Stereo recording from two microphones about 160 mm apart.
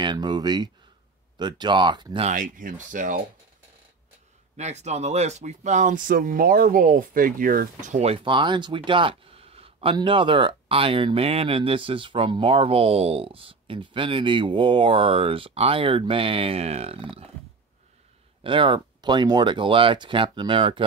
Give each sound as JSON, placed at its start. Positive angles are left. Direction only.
{"t": 0.0, "sound": "speech", "side_deg": -25}
{"t": 2.2, "sound": "speech", "side_deg": -55}
{"t": 4.6, "sound": "speech", "side_deg": -45}
{"t": 18.4, "sound": "speech", "side_deg": -30}